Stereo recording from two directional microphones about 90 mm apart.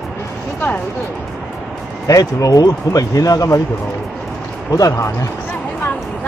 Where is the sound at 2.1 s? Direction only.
40° left (ahead or behind).